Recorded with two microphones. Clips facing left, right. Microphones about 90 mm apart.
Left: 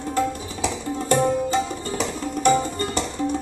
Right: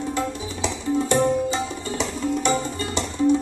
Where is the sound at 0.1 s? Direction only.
45° left (ahead or behind).